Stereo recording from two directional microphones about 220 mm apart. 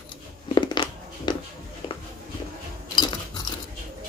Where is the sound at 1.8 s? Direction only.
20° left (ahead or behind).